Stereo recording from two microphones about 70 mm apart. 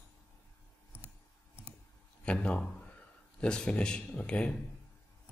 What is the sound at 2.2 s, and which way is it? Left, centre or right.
Speech, centre.